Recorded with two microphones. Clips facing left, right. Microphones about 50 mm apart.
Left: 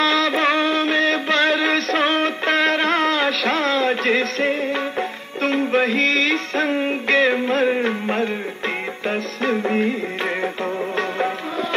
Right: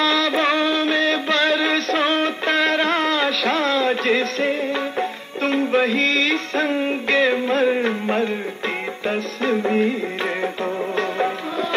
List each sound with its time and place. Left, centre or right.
0.0 s music: left
6.7 s music: centre